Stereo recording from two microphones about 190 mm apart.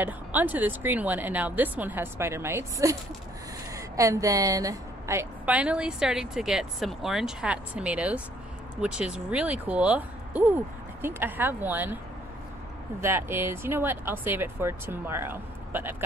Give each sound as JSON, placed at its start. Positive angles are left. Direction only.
{"t": 0.0, "sound": "a woman's voice", "side_deg": -10}
{"t": 13.0, "sound": "a woman's voice", "side_deg": -10}